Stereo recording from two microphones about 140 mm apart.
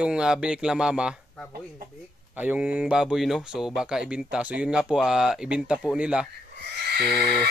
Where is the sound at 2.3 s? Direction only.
10° right (ahead or behind).